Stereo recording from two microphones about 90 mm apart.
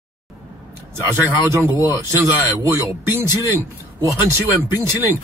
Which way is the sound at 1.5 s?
30° right (ahead or behind).